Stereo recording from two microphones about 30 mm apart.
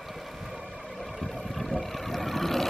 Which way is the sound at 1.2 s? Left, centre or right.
Centre.